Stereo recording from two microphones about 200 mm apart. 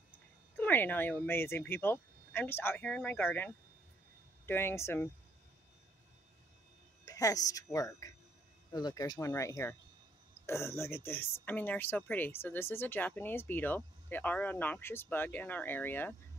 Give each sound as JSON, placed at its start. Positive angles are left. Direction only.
{"t": 0.6, "sound": "speech", "side_deg": 10}
{"t": 7.1, "sound": "speech", "side_deg": 15}